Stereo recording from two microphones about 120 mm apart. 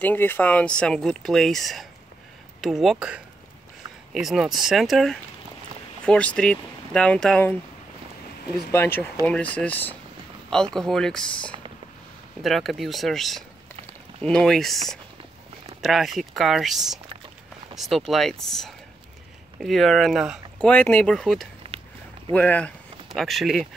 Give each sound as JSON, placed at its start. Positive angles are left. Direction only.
{"t": 0.0, "sound": "speech", "side_deg": 15}
{"t": 8.7, "sound": "speech", "side_deg": 20}
{"t": 20.5, "sound": "speech", "side_deg": 10}
{"t": 23.0, "sound": "speech", "side_deg": 0}